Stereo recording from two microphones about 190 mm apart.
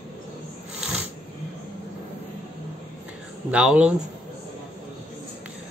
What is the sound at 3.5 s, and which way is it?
Speech, 5° right (ahead or behind).